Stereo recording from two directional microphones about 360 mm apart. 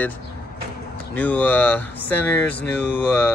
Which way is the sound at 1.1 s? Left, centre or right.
Centre.